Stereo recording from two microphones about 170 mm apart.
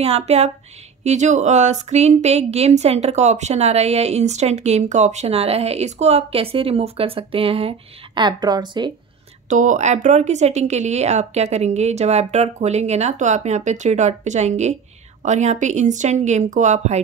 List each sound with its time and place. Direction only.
0.0 s a woman's voice: 35° right (ahead or behind)
9.5 s a woman's voice: 45° right (ahead or behind)